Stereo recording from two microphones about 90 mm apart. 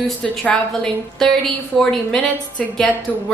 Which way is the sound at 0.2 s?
10° left (ahead or behind).